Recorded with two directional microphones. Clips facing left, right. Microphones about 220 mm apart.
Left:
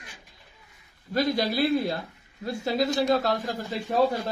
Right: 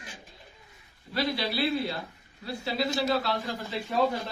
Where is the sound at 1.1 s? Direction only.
45° left (ahead or behind).